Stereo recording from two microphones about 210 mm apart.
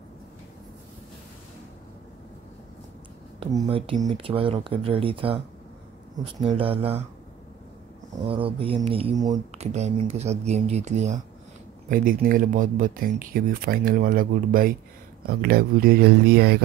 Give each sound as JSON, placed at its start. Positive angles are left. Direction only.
{"t": 3.3, "sound": "speech", "side_deg": -25}
{"t": 6.4, "sound": "speech", "side_deg": -25}
{"t": 8.3, "sound": "speech", "side_deg": -25}